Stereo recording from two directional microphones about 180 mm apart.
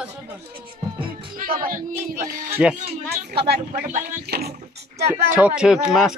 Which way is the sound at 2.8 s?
35° right (ahead or behind).